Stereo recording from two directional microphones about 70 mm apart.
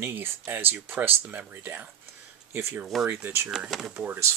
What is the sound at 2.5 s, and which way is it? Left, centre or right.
Speech, right.